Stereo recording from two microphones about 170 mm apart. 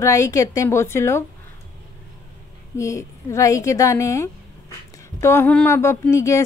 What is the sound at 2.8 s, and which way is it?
A woman's voice, 15° left (ahead or behind).